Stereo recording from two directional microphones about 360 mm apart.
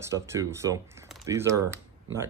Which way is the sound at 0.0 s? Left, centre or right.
Centre.